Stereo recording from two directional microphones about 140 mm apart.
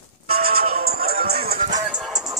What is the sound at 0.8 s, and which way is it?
Music, 90° right.